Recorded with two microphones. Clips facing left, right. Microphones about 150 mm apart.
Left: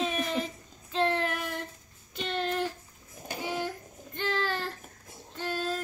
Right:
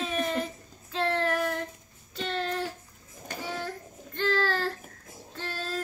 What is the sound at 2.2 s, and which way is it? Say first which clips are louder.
Music: even; 20° left (ahead or behind).